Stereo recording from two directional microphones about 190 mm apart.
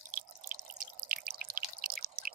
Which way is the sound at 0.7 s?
50° right (ahead or behind).